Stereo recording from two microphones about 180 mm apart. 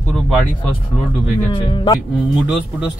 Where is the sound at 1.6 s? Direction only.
20° left (ahead or behind).